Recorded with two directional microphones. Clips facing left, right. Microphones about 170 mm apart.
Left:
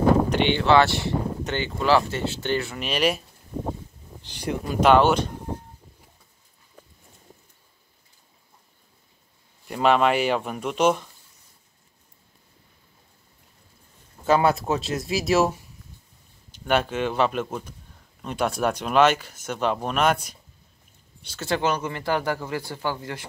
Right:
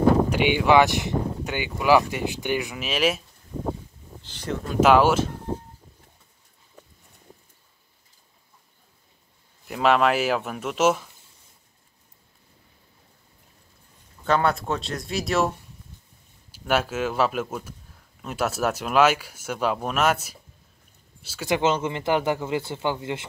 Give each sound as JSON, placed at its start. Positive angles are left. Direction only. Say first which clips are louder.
{"t": 0.3, "sound": "speech", "louder": "even", "side_deg": -10}
{"t": 2.8, "sound": "speech", "louder": "even", "side_deg": 0}
{"t": 4.2, "sound": "a sound", "louder": "left 1 dB", "side_deg": 15}
{"t": 4.6, "sound": "speech", "louder": "even", "side_deg": -5}
{"t": 9.7, "sound": "speech", "louder": "even", "side_deg": 0}
{"t": 14.2, "sound": "speech", "louder": "left 2 dB", "side_deg": 5}
{"t": 21.5, "sound": "speech", "louder": "right 2 dB", "side_deg": -20}